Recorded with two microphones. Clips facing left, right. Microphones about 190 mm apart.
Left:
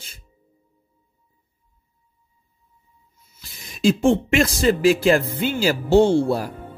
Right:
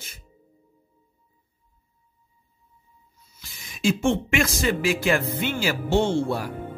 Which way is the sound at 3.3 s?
35° left (ahead or behind).